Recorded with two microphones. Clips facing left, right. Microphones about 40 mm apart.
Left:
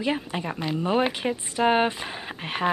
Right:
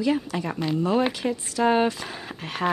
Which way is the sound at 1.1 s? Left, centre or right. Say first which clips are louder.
Right 1 dB; left.